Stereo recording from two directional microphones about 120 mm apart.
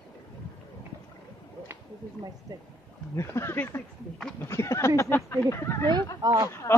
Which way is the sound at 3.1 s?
25° left (ahead or behind).